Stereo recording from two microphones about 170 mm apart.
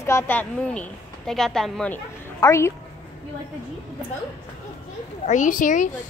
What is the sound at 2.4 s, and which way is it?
Speech, 15° left (ahead or behind).